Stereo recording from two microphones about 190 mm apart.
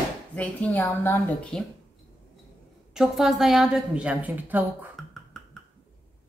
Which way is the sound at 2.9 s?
Centre (ahead or behind).